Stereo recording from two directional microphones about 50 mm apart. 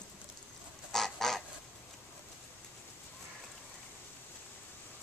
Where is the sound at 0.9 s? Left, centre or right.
Centre.